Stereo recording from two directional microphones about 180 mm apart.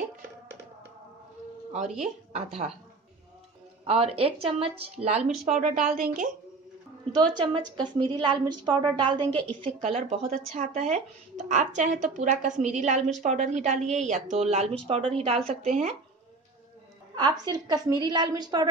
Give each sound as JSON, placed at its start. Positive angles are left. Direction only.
{"t": 2.0, "sound": "speech", "side_deg": -35}
{"t": 3.8, "sound": "speech", "side_deg": -30}
{"t": 5.4, "sound": "a woman's voice", "side_deg": -40}
{"t": 7.1, "sound": "a woman's voice", "side_deg": -25}
{"t": 9.6, "sound": "speech", "side_deg": -35}
{"t": 17.1, "sound": "a woman's voice", "side_deg": -20}